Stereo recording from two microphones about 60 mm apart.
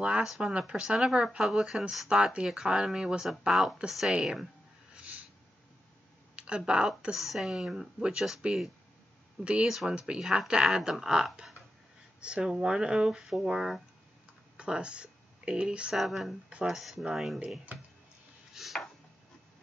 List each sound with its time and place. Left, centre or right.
0.4 s speech: centre
4.9 s snort: right
6.3 s speech: centre
14.6 s speech: centre
15.9 s speech: centre
17.7 s speech: right
18.5 s chopping: centre